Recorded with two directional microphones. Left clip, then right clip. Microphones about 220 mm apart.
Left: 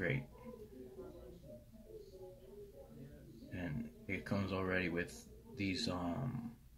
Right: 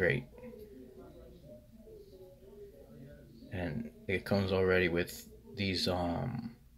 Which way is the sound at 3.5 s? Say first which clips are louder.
Right 6 dB; 45° right (ahead or behind).